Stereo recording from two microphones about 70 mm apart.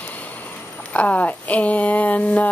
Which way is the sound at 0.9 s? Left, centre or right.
Left.